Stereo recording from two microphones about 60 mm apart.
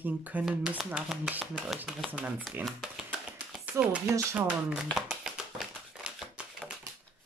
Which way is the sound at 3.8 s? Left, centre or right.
Right.